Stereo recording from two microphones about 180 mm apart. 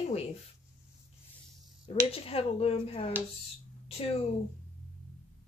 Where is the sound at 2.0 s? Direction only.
30° left (ahead or behind).